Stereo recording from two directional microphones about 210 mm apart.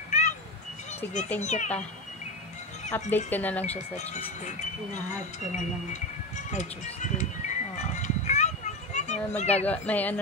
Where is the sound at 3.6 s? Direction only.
30° left (ahead or behind).